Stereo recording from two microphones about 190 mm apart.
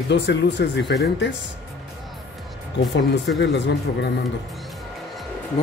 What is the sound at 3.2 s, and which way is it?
Speech, 70° left (ahead or behind).